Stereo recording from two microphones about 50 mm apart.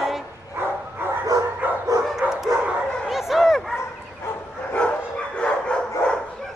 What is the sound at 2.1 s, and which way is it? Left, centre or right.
Dog, centre.